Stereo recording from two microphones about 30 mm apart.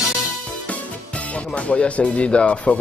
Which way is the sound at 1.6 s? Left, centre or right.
Left.